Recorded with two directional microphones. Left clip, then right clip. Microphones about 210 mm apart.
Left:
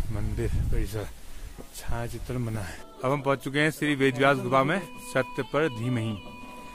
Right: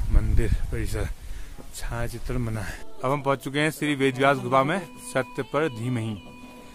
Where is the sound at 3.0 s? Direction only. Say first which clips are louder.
Right 1 dB; 5° right (ahead or behind).